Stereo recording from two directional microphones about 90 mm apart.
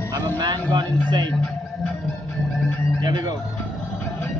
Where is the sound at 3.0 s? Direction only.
50° right (ahead or behind).